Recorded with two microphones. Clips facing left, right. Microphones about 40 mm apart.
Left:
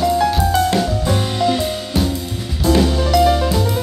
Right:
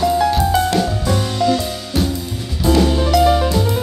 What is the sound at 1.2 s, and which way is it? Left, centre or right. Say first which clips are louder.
Music: right 2 dB; left.